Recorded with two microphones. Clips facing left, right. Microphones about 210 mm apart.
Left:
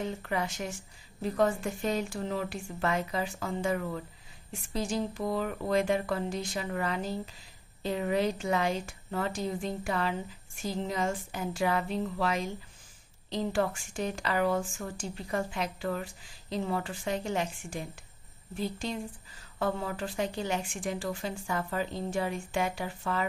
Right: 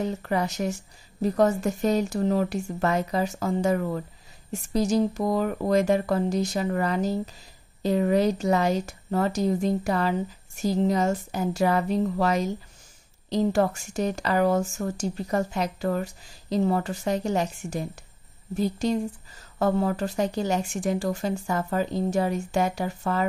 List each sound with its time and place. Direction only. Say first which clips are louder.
0.0 s speech: right 6 dB; 40° right (ahead or behind)